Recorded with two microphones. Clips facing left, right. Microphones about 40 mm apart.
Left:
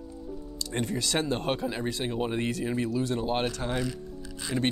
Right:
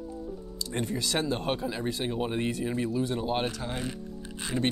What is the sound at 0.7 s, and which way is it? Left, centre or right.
Speech, left.